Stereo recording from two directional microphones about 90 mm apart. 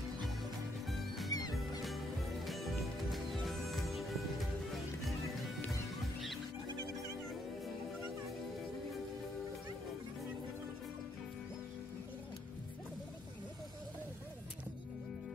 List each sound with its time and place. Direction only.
1.3 s music: 45° left (ahead or behind)
1.8 s music: centre (ahead or behind)